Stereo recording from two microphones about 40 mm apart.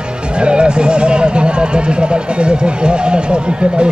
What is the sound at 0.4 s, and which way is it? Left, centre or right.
Speech, right.